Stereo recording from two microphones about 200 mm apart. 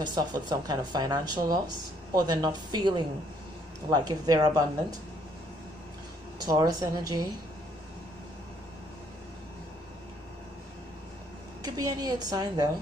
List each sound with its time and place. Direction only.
0.0 s speech: 20° right (ahead or behind)
6.4 s speech: 20° right (ahead or behind)
11.6 s speech: 20° right (ahead or behind)